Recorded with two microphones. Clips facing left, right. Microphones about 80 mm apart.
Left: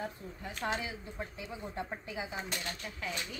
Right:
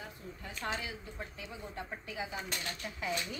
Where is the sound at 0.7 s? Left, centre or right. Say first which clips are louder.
Left 2 dB; centre.